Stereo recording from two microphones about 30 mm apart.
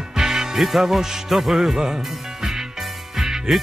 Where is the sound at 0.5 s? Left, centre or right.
Centre.